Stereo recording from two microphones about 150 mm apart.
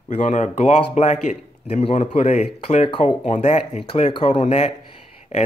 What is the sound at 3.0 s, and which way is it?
Speech, 50° left (ahead or behind).